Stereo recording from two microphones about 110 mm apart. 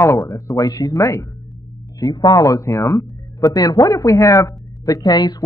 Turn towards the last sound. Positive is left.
turn(degrees=35)  # may be behind; listen again after turning